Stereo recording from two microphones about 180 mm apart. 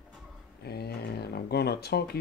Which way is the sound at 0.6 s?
60° left (ahead or behind).